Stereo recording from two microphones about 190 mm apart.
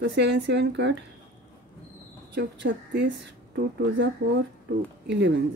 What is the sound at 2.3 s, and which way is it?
Speech, 70° right (ahead or behind).